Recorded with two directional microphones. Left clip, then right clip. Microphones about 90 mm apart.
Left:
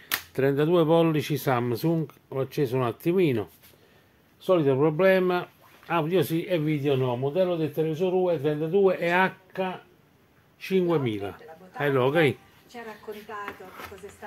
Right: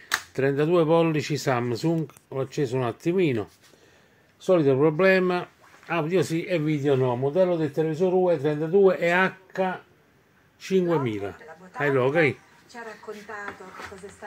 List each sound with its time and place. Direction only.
0.3 s speech: 5° left (ahead or behind)
4.4 s speech: 55° right (ahead or behind)
4.7 s speech: 25° right (ahead or behind)
5.9 s speech: 10° right (ahead or behind)
6.8 s speech: 55° right (ahead or behind)
7.2 s speech: 85° right; by 8.8 s 55° right (ahead or behind)
8.8 s speech: 25° right (ahead or behind)
9.5 s speech: 50° right (ahead or behind)
11.0 s speech: 15° right (ahead or behind)
12.0 s speech: 15° left (ahead or behind)